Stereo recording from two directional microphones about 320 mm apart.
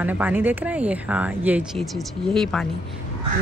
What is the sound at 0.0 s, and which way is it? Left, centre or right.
Speech, centre.